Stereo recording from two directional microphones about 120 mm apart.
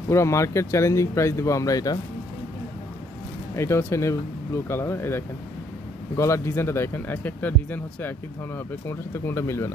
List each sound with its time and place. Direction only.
0.1 s speech: 25° left (ahead or behind)
3.5 s speech: 25° left (ahead or behind)